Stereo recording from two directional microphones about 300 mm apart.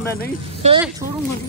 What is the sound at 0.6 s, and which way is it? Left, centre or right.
Speech, right.